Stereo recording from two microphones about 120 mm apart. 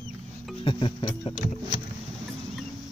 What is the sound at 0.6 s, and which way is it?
Speech, 45° left (ahead or behind).